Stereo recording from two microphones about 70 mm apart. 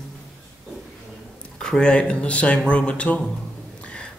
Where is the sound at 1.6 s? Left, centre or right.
Centre.